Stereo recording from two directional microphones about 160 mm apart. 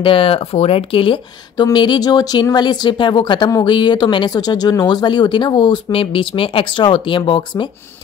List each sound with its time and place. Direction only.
0.0 s speech: 35° left (ahead or behind)